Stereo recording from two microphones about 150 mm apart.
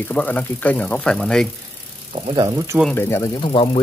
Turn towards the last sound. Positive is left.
turn(degrees=35)  # may be behind; listen again after turning